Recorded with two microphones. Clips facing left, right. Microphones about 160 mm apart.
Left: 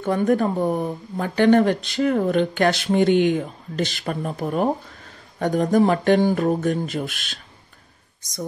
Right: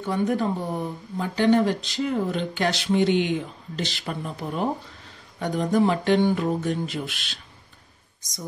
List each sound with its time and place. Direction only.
0.0 s speech: 50° left (ahead or behind)